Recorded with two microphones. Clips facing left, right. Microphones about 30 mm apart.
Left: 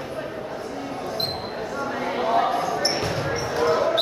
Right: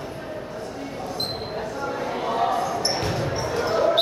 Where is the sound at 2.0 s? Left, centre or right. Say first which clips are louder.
Left 3 dB; centre.